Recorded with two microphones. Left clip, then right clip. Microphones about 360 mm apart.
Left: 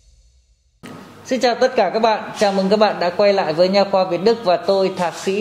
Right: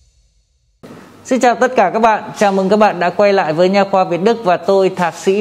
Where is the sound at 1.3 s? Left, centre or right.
Right.